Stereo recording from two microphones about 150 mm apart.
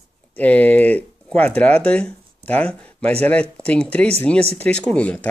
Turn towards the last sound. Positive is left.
turn(degrees=10)  # may be behind; listen again after turning